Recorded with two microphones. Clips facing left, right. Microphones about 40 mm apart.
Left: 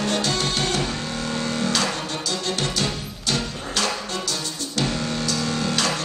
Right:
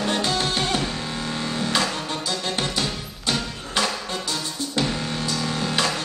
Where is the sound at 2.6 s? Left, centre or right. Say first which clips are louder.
Left 1 dB; right.